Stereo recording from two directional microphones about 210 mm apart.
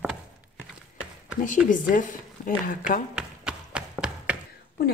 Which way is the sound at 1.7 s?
40° left (ahead or behind).